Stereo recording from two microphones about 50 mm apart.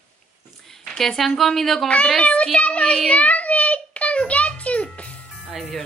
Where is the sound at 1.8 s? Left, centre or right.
Left.